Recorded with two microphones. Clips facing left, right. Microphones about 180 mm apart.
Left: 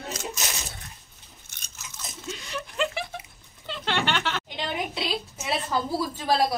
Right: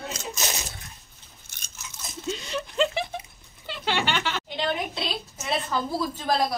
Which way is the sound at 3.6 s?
5° right (ahead or behind).